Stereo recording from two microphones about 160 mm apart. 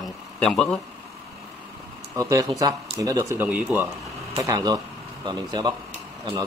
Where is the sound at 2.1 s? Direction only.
20° right (ahead or behind).